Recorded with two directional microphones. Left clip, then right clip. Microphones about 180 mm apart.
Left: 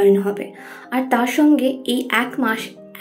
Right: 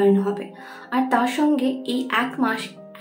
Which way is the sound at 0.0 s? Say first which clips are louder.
Left 4 dB; 15° left (ahead or behind).